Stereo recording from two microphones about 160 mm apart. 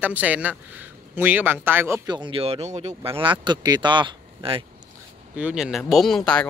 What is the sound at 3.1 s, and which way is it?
Speech, 30° right (ahead or behind).